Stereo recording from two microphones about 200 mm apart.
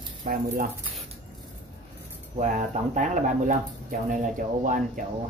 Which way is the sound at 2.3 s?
35° right (ahead or behind).